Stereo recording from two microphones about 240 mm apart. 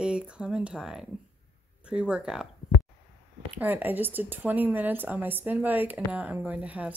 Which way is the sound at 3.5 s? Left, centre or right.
Centre.